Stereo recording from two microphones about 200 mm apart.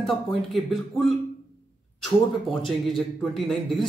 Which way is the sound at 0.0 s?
Centre (ahead or behind).